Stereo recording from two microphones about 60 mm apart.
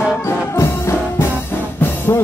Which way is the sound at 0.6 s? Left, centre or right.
Left.